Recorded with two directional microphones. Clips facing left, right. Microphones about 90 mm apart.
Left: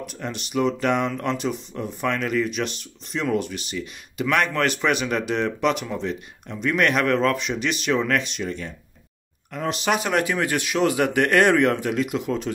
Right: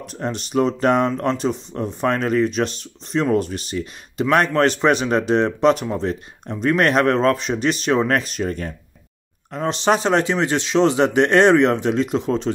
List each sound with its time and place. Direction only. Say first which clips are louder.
0.0 s speech: right 5 dB; 35° right (ahead or behind)
9.5 s speech: right 5 dB; 30° right (ahead or behind)